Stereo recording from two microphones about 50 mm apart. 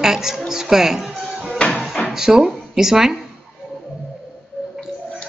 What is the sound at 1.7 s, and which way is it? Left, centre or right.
Music, centre.